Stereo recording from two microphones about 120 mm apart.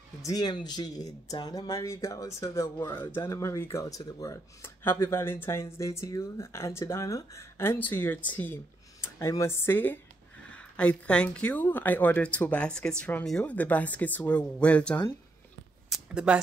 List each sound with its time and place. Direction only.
0.2 s speech: 35° left (ahead or behind); by 8.5 s 15° left (ahead or behind)
9.0 s speech: 25° left (ahead or behind)
15.9 s a sound: 10° right (ahead or behind)